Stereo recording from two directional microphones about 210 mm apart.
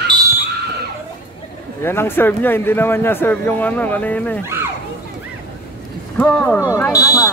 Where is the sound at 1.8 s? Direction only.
10° left (ahead or behind).